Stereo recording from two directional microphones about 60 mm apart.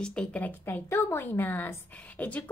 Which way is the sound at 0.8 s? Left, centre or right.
Left.